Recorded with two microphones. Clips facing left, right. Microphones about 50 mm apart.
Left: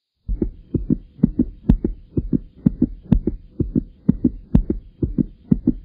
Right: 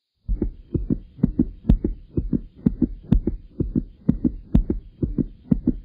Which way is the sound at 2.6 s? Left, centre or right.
Centre.